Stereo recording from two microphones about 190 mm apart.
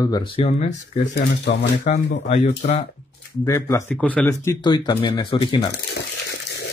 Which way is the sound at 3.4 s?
15° left (ahead or behind).